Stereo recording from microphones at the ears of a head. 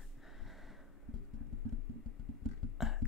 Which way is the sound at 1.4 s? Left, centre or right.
Right.